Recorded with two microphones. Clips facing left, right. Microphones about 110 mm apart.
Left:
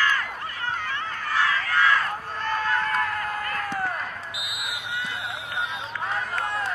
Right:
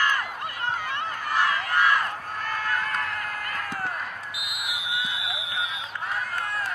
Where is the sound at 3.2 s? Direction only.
25° left (ahead or behind).